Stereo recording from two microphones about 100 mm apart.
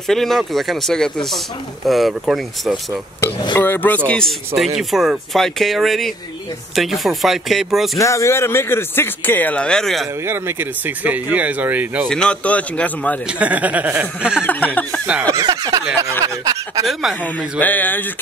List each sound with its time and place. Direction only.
0.0 s speech: 5° left (ahead or behind)
3.5 s speech: 20° left (ahead or behind)
4.1 s speech: 5° left (ahead or behind)
8.0 s speech: 30° left (ahead or behind); by 10.0 s 5° left (ahead or behind)
10.2 s speech: 25° right (ahead or behind)
12.1 s speech: 10° left (ahead or behind)
13.3 s speech: 15° right (ahead or behind)
14.4 s speech: 15° left (ahead or behind)
15.2 s snicker: 35° right (ahead or behind)
16.8 s speech: centre (ahead or behind)
17.6 s speech: 15° left (ahead or behind)